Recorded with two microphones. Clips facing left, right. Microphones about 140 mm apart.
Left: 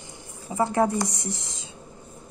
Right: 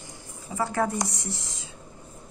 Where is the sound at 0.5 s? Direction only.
20° left (ahead or behind).